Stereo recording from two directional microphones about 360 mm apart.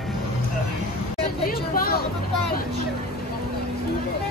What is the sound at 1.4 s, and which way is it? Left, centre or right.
Speech, left.